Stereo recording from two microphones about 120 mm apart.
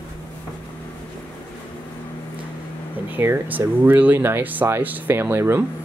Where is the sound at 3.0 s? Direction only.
15° right (ahead or behind).